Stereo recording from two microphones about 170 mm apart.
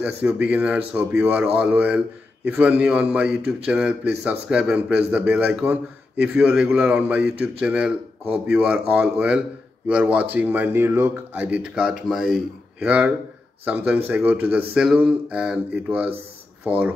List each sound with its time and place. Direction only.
0.0 s a man's voice: 10° right (ahead or behind)